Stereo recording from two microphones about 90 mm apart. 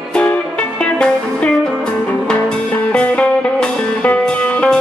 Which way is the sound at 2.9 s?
15° left (ahead or behind).